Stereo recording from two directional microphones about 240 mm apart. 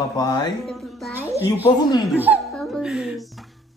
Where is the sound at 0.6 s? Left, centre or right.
Centre.